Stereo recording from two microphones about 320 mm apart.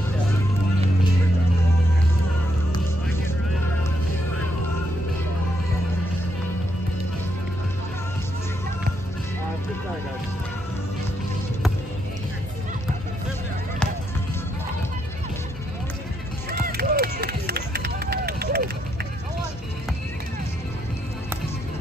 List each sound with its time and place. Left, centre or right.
16.4 s run: right